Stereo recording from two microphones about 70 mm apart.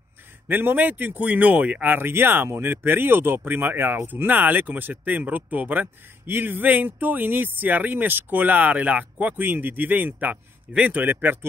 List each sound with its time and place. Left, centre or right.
0.5 s speech: right